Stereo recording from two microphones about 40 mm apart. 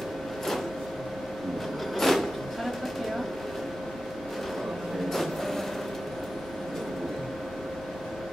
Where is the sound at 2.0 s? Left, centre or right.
Centre.